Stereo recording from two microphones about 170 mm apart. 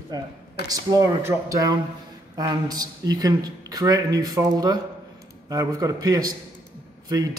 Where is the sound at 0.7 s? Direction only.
20° right (ahead or behind).